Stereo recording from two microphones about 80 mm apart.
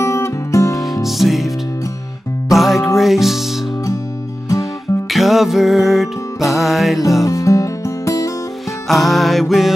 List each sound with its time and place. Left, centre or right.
0.0 s music: left
1.0 s music: centre
2.5 s music: centre
5.1 s music: centre
7.2 s music: left
8.8 s music: centre